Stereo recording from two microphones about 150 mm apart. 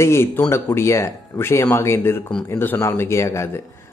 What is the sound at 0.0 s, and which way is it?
A man's voice, 15° left (ahead or behind).